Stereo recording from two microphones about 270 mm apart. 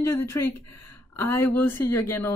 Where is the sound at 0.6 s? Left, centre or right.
Left.